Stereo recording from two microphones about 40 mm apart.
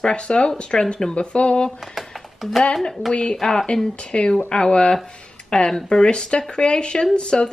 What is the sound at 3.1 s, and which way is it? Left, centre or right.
Speech, left.